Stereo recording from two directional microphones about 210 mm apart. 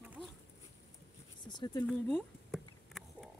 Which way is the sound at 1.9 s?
5° left (ahead or behind).